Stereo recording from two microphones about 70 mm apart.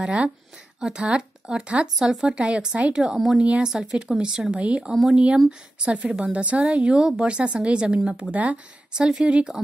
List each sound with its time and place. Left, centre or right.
0.0 s a woman's voice: centre